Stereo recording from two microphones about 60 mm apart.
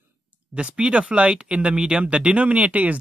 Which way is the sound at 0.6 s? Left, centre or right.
Centre.